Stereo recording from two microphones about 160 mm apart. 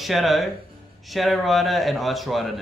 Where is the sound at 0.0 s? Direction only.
Centre (ahead or behind).